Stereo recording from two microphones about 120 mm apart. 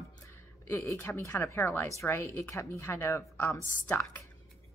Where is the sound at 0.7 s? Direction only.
20° left (ahead or behind).